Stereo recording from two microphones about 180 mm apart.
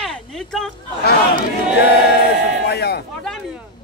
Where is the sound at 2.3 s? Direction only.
65° left (ahead or behind).